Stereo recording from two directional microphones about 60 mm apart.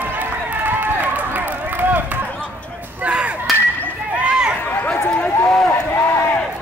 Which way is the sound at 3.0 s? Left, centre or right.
Right.